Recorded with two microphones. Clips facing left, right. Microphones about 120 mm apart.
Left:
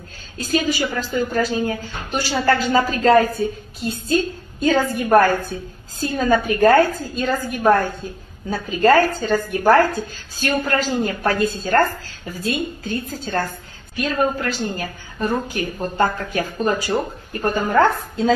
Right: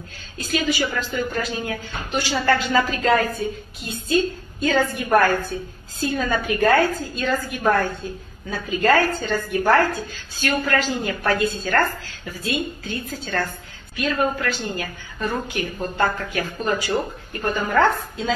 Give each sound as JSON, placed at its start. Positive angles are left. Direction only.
{"t": 0.4, "sound": "a woman's voice", "side_deg": 40}